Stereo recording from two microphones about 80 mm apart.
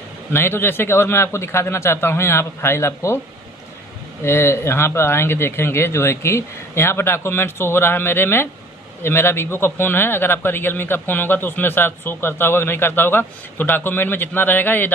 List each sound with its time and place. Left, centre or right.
0.3 s a man's voice: left
4.2 s a man's voice: left